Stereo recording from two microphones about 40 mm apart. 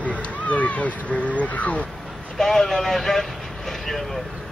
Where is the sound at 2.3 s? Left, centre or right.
Centre.